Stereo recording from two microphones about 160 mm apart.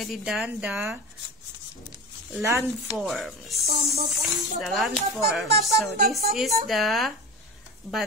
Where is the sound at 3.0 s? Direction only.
Centre (ahead or behind).